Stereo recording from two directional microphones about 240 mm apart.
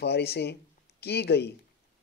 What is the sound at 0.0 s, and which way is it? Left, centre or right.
Speech, left.